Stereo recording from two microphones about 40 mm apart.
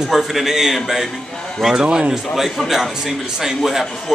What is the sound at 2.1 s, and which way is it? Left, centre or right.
A man's voice, centre.